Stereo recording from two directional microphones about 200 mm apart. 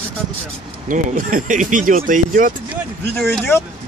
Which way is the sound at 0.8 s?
40° right (ahead or behind).